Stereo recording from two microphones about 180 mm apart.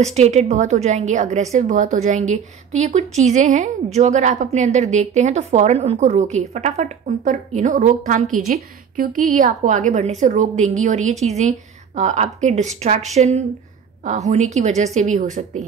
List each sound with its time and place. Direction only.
0.0 s a woman's voice: 40° right (ahead or behind)